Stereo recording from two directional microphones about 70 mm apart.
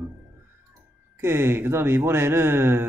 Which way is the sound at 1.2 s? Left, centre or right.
Right.